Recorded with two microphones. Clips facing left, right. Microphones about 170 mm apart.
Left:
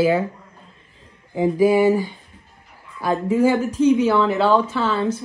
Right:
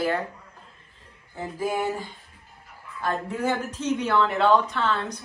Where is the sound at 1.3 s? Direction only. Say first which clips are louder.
Left 12 dB; 85° left.